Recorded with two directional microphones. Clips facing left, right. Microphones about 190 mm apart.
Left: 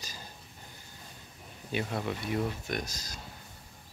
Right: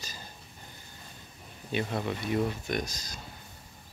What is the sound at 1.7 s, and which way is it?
Speech, 5° left (ahead or behind).